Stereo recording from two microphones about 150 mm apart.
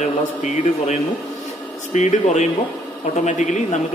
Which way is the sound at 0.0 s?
50° left (ahead or behind).